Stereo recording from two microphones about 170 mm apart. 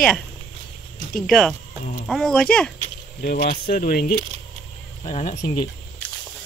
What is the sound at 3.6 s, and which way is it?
Speech, 60° left (ahead or behind).